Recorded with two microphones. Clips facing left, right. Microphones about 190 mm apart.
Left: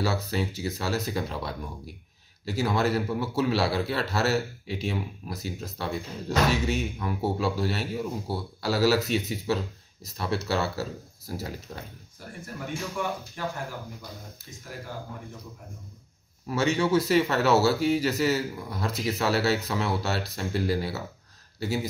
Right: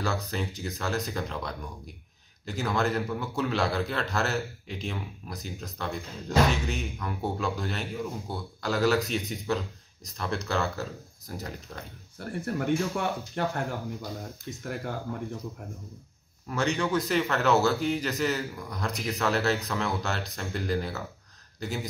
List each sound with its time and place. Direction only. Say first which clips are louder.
0.0 s a man's voice: left 3 dB; 5° left (ahead or behind)
12.5 s speech: right 5 dB; 60° right (ahead or behind)
14.7 s speech: right 4 dB; 60° right (ahead or behind)
16.4 s speech: left 3 dB; 5° left (ahead or behind)